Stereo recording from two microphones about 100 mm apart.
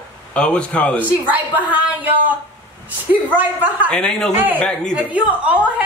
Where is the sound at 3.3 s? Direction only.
15° right (ahead or behind).